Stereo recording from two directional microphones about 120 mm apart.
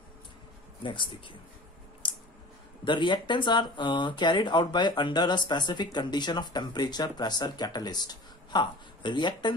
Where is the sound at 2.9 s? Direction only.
40° left (ahead or behind).